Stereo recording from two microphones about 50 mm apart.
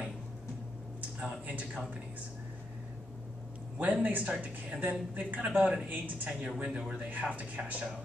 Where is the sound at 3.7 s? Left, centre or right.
Right.